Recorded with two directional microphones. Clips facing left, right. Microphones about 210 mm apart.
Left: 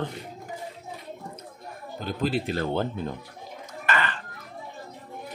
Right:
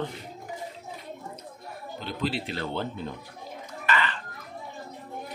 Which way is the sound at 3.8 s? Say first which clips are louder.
Even; 50° left (ahead or behind).